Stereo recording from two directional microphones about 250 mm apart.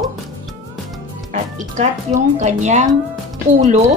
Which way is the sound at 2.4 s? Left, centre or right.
Right.